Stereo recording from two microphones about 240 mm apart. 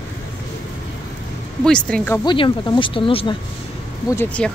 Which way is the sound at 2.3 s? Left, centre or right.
Centre.